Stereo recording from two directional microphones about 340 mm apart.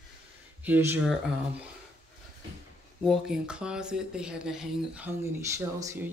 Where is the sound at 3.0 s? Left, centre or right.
Centre.